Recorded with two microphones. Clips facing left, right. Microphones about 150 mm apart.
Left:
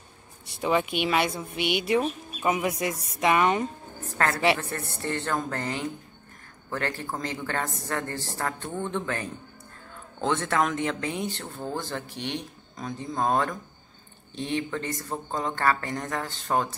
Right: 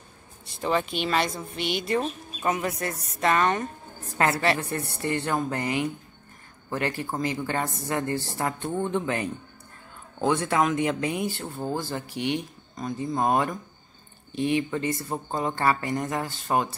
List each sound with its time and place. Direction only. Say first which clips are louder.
0.6 s speech: left 1 dB; 10° left (ahead or behind)
4.2 s a woman's voice: even; 15° right (ahead or behind)